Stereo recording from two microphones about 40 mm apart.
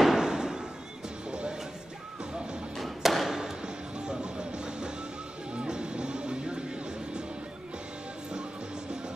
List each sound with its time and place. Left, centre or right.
0.0 s fireworks: centre
2.8 s thump: centre
3.3 s music: centre